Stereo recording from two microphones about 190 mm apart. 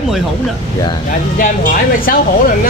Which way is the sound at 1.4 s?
45° left (ahead or behind).